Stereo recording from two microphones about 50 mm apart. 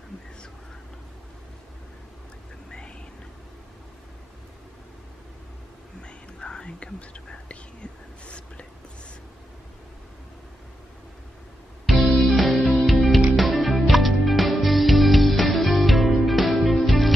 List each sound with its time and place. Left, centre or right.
5.9 s whispering: centre
11.8 s music: centre